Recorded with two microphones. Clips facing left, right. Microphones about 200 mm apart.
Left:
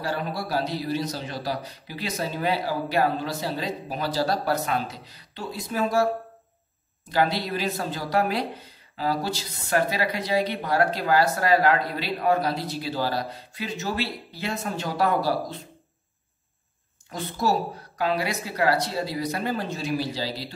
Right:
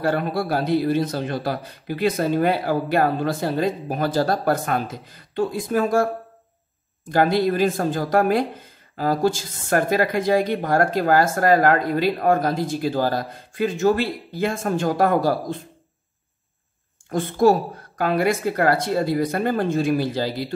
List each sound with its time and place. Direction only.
0.0 s speech: 55° right (ahead or behind)
7.1 s speech: 50° right (ahead or behind)
17.1 s speech: 50° right (ahead or behind)